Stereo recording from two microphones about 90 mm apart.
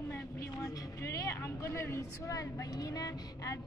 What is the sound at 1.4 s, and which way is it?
A woman's voice, 30° left (ahead or behind).